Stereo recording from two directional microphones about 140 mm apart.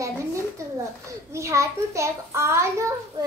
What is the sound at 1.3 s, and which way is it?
A child's voice, 20° right (ahead or behind).